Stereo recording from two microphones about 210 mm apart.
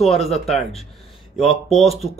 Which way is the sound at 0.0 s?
Centre (ahead or behind).